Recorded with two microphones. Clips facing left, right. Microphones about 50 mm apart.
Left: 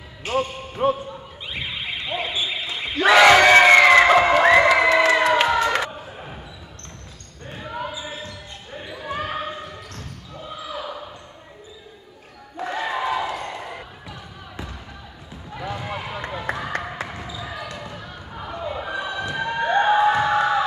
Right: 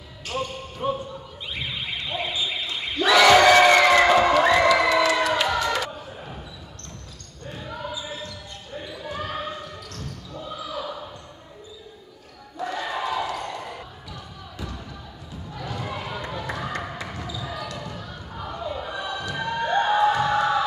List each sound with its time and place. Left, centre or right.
0.2 s speech: left
1.5 s car alarm: left
3.0 s crowd: left
5.9 s basketball bounce: left
7.4 s basketball bounce: left
12.5 s basketball bounce: left
15.5 s a sound: left
16.3 s run: left
17.1 s basketball bounce: left